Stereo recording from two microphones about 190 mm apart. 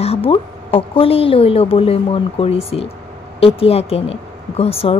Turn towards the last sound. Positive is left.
turn(degrees=30)  # may be behind; listen again after turning